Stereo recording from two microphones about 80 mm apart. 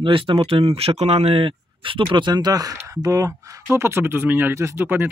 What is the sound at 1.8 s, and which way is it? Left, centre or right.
Speech, right.